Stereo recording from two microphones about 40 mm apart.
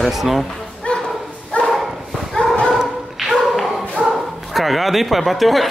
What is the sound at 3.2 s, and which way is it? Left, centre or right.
Dog, centre.